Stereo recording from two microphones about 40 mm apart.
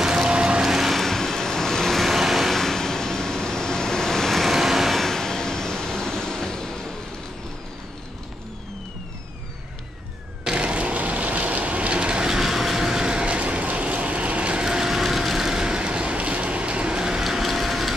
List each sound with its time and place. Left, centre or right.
0.0 s a sound: centre
0.6 s vehicle: centre
0.9 s vehicle: centre
4.5 s vehicle: centre
10.4 s a sound: right
12.4 s vehicle: centre; by 14.6 s right
14.6 s train: centre
17.2 s ratchet: centre